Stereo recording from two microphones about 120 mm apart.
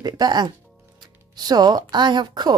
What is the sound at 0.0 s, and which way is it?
Speech, 35° right (ahead or behind).